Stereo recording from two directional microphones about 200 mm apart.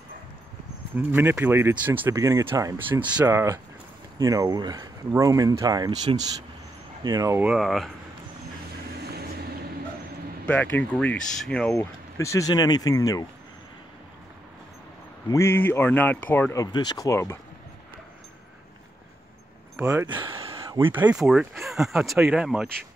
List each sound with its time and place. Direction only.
0.9 s speech: 10° right (ahead or behind)
9.0 s vehicle: 55° right (ahead or behind)
10.4 s speech: 10° left (ahead or behind)
15.2 s speech: 15° left (ahead or behind)
16.7 s speech: 20° left (ahead or behind)
19.8 s a sound: 15° right (ahead or behind)
20.6 s speech: 15° right (ahead or behind)